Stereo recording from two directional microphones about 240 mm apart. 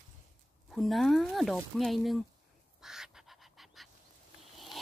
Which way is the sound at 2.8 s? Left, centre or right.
Centre.